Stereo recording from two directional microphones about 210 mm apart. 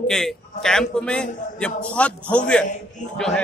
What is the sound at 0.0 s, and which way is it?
A man's voice, centre (ahead or behind).